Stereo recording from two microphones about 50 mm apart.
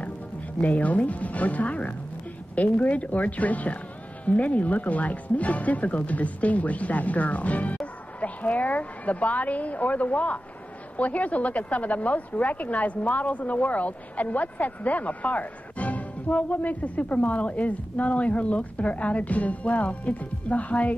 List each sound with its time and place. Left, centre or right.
0.6 s a woman's voice: left